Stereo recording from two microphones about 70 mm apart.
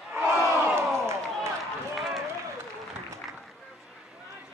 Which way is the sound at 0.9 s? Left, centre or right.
Right.